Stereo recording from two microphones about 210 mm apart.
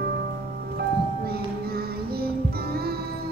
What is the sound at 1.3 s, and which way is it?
Music, 45° right (ahead or behind).